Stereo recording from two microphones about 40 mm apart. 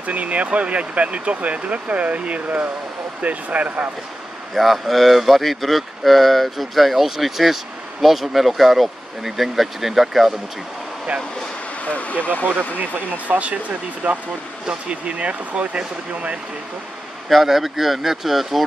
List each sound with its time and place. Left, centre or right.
0.0 s speech: right
2.4 s speech: right
4.6 s speech: centre
11.8 s speech: left
13.3 s speech: right
17.3 s speech: centre